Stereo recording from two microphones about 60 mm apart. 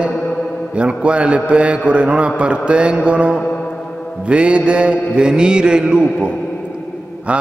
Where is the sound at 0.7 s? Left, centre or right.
Centre.